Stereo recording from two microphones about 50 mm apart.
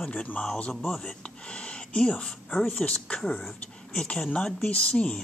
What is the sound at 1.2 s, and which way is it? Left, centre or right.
Speech, left.